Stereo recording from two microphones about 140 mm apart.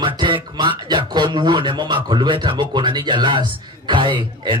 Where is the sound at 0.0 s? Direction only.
35° right (ahead or behind).